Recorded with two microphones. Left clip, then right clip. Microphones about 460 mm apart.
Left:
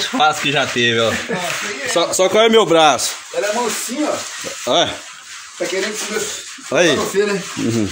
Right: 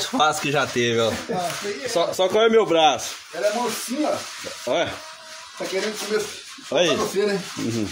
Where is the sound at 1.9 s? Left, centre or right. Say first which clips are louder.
Left 6 dB; right.